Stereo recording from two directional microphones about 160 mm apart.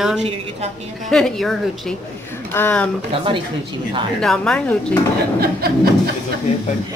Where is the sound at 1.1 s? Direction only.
Centre (ahead or behind).